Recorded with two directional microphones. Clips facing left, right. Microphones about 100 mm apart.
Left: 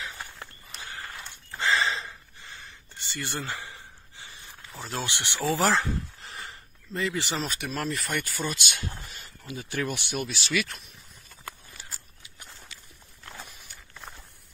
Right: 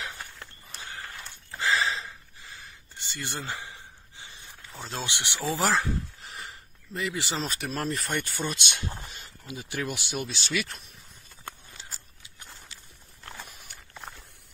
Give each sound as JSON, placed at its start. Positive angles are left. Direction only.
{"t": 1.6, "sound": "gasp", "side_deg": 0}
{"t": 3.0, "sound": "a sound", "side_deg": -15}
{"t": 4.8, "sound": "speech", "side_deg": -20}
{"t": 6.9, "sound": "speech", "side_deg": -10}
{"t": 7.4, "sound": "speech", "side_deg": -35}
{"t": 10.2, "sound": "speech", "side_deg": -30}
{"t": 11.4, "sound": "a sound", "side_deg": -25}
{"t": 13.5, "sound": "walk", "side_deg": -50}